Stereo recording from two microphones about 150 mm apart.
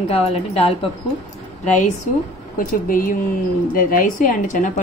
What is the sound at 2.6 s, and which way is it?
A woman's voice, 65° left (ahead or behind).